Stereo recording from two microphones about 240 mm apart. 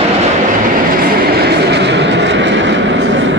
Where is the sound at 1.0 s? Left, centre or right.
Right.